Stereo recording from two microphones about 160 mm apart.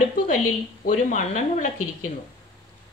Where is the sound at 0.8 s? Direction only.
50° left (ahead or behind).